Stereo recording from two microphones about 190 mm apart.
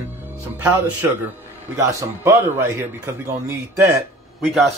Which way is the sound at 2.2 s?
15° right (ahead or behind).